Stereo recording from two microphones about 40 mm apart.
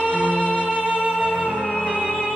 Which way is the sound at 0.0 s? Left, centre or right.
Right.